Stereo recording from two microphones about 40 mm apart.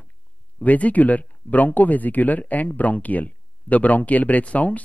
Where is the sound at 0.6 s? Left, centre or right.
Left.